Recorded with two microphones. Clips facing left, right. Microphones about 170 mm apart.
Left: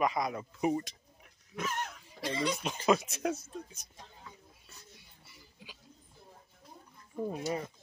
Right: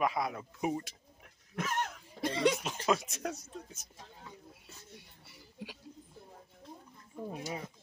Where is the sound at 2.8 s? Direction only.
Centre (ahead or behind).